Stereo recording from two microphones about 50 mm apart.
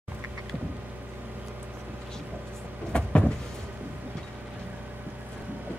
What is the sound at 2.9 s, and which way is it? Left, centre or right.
Vehicle, centre.